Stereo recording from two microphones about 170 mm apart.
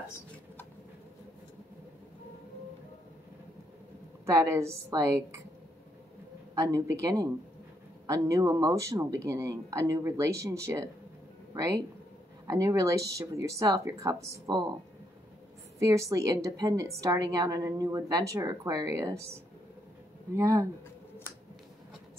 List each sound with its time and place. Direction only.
4.3 s speech: 15° right (ahead or behind)
6.5 s a woman's voice: 20° right (ahead or behind)
15.8 s a woman's voice: 20° right (ahead or behind)
20.3 s speech: 15° right (ahead or behind)